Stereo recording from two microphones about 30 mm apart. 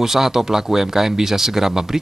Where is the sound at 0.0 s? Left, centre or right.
Centre.